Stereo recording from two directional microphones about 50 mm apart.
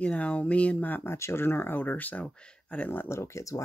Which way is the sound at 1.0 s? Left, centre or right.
Left.